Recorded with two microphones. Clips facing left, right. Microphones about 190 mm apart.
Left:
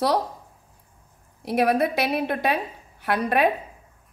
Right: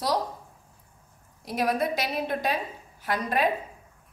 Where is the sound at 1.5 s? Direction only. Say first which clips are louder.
Left 5 dB; 60° left (ahead or behind).